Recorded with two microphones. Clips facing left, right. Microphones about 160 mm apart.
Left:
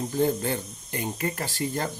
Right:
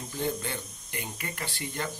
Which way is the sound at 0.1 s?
40° left (ahead or behind).